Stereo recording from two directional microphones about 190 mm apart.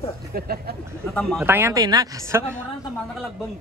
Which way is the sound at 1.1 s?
Centre (ahead or behind).